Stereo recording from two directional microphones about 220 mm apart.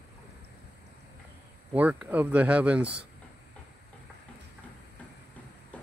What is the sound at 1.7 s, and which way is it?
Speech, 5° right (ahead or behind).